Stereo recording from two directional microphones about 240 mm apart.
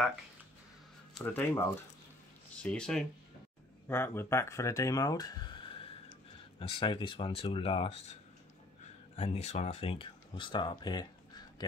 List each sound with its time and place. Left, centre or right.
1.1 s speech: centre